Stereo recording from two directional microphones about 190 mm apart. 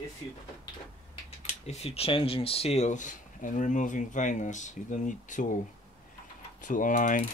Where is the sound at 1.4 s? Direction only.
35° left (ahead or behind).